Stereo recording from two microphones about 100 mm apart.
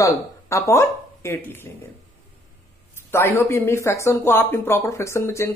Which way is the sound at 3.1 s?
25° left (ahead or behind).